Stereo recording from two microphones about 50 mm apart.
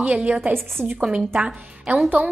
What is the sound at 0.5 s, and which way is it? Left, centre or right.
Speech, right.